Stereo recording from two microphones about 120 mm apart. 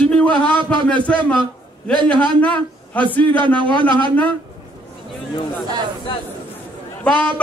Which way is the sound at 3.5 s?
40° right (ahead or behind).